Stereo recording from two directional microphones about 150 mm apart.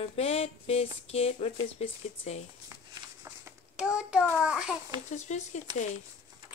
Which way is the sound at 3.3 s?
20° right (ahead or behind).